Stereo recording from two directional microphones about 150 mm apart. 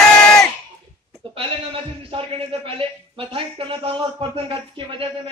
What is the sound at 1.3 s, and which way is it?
A man's voice, 35° right (ahead or behind).